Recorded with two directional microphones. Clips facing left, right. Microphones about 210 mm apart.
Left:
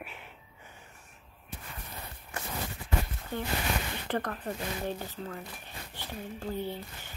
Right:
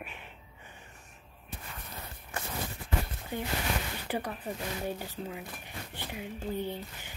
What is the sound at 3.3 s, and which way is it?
Speech, 15° right (ahead or behind).